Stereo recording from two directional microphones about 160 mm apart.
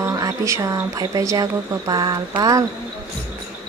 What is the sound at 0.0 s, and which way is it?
Speech, 20° right (ahead or behind).